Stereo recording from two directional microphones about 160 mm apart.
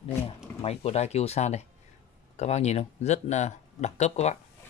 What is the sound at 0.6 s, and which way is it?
Speech, 40° left (ahead or behind).